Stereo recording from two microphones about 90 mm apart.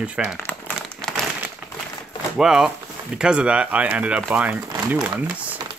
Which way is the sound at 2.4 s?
5° right (ahead or behind).